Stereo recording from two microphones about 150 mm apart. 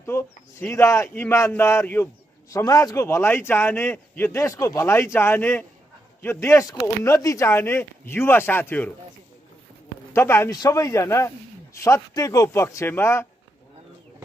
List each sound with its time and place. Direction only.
0.0 s a man's voice: 15° left (ahead or behind)
10.1 s speech: 15° left (ahead or behind)